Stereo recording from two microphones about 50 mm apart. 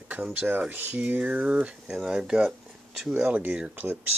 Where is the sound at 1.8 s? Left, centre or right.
Centre.